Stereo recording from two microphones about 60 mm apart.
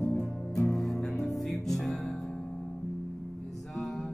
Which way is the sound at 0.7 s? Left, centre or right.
Centre.